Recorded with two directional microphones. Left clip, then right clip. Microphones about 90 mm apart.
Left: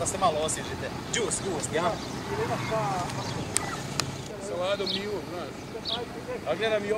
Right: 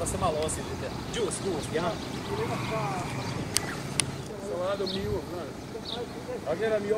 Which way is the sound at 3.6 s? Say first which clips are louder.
Right 2 dB; 30° right (ahead or behind).